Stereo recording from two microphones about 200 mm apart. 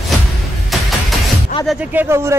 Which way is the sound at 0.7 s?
Centre (ahead or behind).